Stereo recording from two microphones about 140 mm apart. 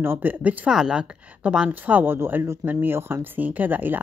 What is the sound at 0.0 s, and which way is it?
Speech, 15° right (ahead or behind).